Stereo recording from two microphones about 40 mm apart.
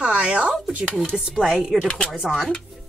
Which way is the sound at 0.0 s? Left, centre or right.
Right.